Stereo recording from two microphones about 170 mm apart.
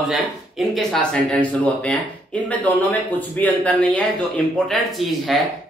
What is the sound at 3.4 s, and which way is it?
Speech, 10° left (ahead or behind).